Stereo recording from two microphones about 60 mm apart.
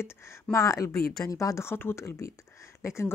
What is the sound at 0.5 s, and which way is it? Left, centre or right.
A woman's voice, left.